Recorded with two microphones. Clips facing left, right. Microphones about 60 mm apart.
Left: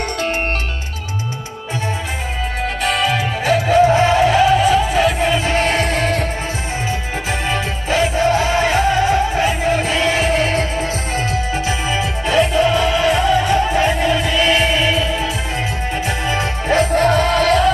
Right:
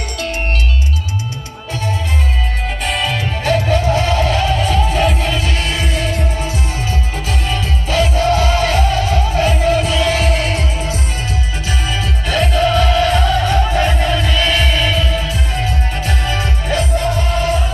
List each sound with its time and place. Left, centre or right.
2.8 s music: centre
3.8 s music: left
5.2 s music: centre
5.5 s music: left
6.9 s music: left
9.8 s music: left
16.9 s music: left